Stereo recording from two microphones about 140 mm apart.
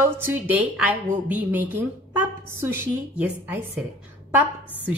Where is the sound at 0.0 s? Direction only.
15° right (ahead or behind).